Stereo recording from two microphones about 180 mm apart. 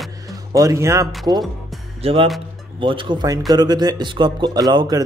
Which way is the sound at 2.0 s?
30° right (ahead or behind).